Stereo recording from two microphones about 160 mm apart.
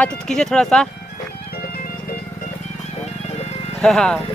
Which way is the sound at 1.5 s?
70° left (ahead or behind).